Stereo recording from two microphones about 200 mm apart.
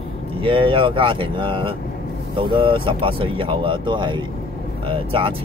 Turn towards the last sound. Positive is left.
turn(degrees=-25)  # may be behind; listen again after turning